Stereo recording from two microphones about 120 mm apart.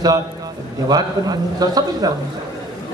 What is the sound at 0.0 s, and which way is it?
A man's voice, 30° right (ahead or behind).